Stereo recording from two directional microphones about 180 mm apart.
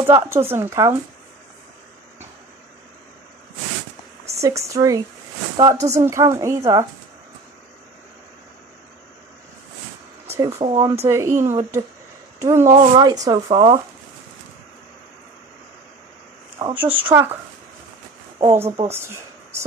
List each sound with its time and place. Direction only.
0.0 s a woman's voice: 15° right (ahead or behind)
4.4 s a woman's voice: 15° right (ahead or behind)
10.6 s speech: 25° right (ahead or behind)
11.1 s a woman's voice: 15° right (ahead or behind)
16.7 s a woman's voice: 10° right (ahead or behind)
18.4 s a woman's voice: 15° right (ahead or behind)